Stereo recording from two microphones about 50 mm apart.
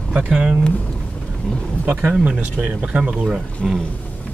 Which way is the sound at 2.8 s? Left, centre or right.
Right.